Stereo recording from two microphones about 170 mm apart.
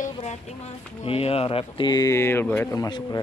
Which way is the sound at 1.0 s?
35° left (ahead or behind).